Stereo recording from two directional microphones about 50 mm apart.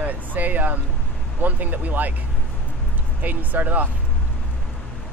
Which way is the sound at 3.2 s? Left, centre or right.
Right.